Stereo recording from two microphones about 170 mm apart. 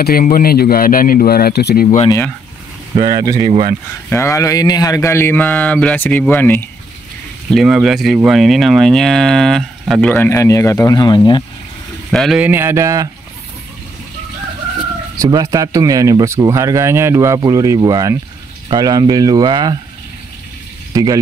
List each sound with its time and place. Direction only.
0.0 s speech: 60° left (ahead or behind)
2.0 s speech: 15° left (ahead or behind)
3.0 s speech: 20° right (ahead or behind)
4.1 s speech: 15° left (ahead or behind)
7.4 s speech: centre (ahead or behind)
10.1 s speech: 15° left (ahead or behind)
12.1 s speech: centre (ahead or behind)
12.4 s speech: 15° right (ahead or behind)
15.1 s speech: 20° right (ahead or behind)
20.9 s speech: 20° right (ahead or behind)